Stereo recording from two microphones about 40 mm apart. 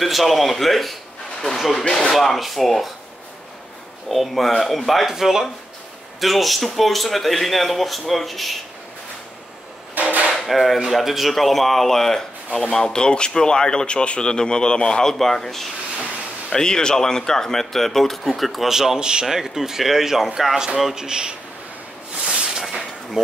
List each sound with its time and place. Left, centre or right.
0.0 s speech: centre
1.9 s speech: centre
2.1 s speech: centre
4.1 s speech: centre
5.1 s speech: centre
6.2 s speech: centre
10.0 s hammer: right
10.3 s speech: centre
18.7 s speech: centre
18.9 s speech: centre
19.2 s speech: centre
22.2 s a sound: centre